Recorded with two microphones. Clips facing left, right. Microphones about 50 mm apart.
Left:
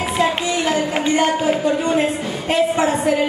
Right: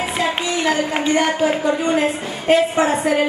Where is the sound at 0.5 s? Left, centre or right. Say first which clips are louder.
Even; right.